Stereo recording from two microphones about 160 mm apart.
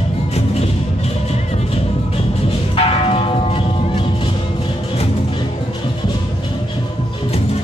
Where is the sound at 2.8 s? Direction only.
35° left (ahead or behind).